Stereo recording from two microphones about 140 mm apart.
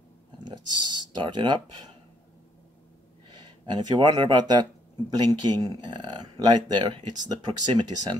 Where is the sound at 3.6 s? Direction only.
35° right (ahead or behind).